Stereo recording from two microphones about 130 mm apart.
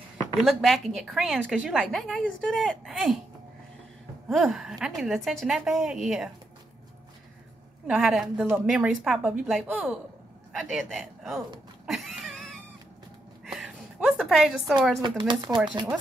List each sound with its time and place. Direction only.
0.4 s a woman's voice: centre (ahead or behind)
1.3 s a woman's voice: 10° right (ahead or behind)
1.7 s a woman's voice: 5° left (ahead or behind)
4.3 s a woman's voice: centre (ahead or behind)
7.8 s a woman's voice: 5° right (ahead or behind)
11.8 s a sound: centre (ahead or behind)
15.0 s speech: 35° right (ahead or behind)